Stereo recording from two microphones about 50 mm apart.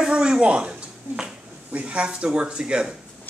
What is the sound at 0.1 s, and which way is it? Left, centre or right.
Speech, centre.